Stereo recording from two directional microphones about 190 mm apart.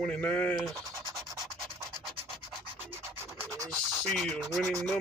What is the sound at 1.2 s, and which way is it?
Rub, 15° right (ahead or behind).